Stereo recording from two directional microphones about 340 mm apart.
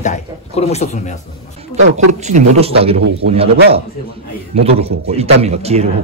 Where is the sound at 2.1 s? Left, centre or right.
Centre.